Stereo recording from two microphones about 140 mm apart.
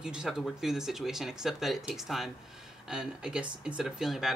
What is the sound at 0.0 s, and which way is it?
Speech, 5° right (ahead or behind).